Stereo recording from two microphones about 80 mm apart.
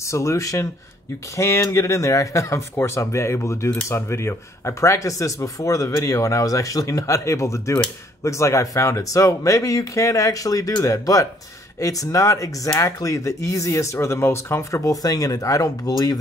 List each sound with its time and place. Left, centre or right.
0.0 s speech: left